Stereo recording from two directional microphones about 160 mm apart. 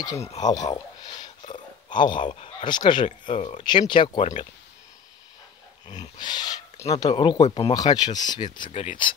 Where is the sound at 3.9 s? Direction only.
30° left (ahead or behind).